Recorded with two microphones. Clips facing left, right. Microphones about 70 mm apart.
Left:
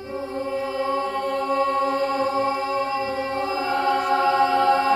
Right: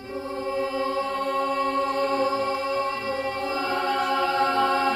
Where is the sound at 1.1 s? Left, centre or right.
Centre.